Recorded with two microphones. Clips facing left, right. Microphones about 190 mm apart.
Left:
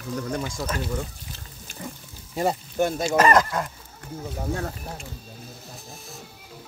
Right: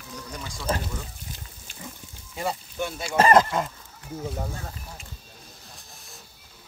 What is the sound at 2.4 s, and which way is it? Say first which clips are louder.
Speech: left 6 dB; 45° left (ahead or behind).